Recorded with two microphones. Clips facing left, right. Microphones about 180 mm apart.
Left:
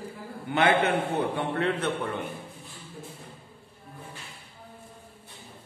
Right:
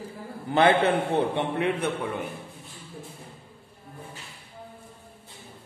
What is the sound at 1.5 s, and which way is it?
Speech, 10° right (ahead or behind).